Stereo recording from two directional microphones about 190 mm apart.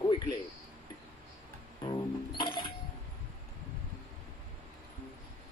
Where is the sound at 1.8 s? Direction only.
25° left (ahead or behind).